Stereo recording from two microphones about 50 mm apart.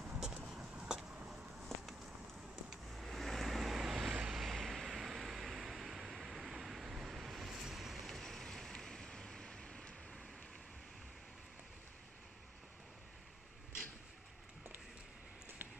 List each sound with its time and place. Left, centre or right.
0.0 s vehicle: centre
2.7 s vehicle: centre